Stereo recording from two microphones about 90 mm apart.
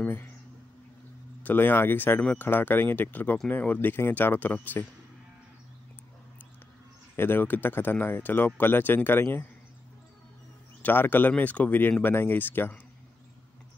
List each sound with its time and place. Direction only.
0.0 s a sound: 20° left (ahead or behind)
1.4 s speech: 20° left (ahead or behind)
7.2 s speech: 25° left (ahead or behind)
10.8 s speech: 20° left (ahead or behind)